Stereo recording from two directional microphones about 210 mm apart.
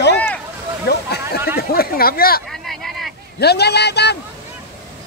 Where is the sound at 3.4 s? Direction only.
50° left (ahead or behind).